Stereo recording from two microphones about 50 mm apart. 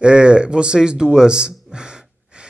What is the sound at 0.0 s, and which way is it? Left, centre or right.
Speech, right.